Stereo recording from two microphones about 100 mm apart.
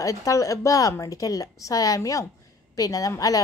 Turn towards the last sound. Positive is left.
turn(degrees=35)  # may be behind; listen again after turning